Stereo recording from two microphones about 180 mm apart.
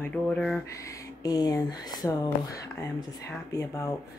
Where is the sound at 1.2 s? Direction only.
20° left (ahead or behind).